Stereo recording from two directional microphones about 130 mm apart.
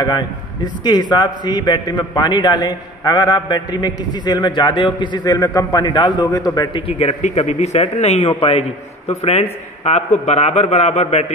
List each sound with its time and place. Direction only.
0.0 s a man's voice: 30° left (ahead or behind)
5.9 s a man's voice: 40° left (ahead or behind)
6.9 s a man's voice: 50° left (ahead or behind)
7.2 s a man's voice: 65° left (ahead or behind)